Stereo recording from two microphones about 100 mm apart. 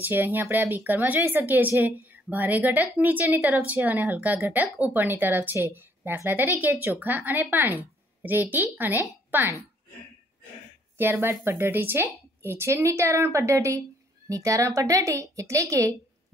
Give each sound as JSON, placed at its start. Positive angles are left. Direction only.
{"t": 0.0, "sound": "a woman's voice", "side_deg": -20}
{"t": 11.0, "sound": "a woman's voice", "side_deg": -20}